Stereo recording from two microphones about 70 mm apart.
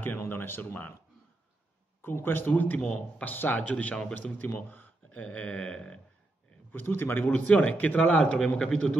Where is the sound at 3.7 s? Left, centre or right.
Centre.